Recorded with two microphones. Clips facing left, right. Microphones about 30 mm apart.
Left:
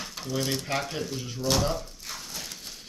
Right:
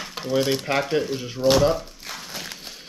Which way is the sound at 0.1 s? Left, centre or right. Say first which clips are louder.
Right 9 dB; right.